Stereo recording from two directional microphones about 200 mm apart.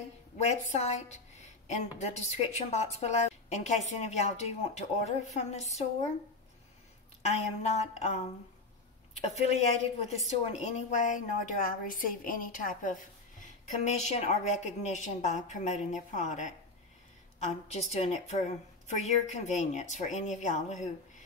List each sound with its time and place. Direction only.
0.4 s a woman's voice: 35° left (ahead or behind)
7.2 s a woman's voice: 35° left (ahead or behind)
9.3 s a woman's voice: 30° left (ahead or behind)